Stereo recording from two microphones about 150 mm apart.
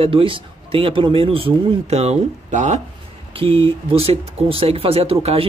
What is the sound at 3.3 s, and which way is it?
Speech, 35° right (ahead or behind).